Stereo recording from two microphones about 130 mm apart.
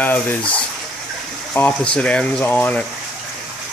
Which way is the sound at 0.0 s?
15° left (ahead or behind).